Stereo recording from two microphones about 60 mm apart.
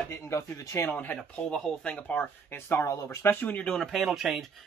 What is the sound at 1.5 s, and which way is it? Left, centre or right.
Speech, centre.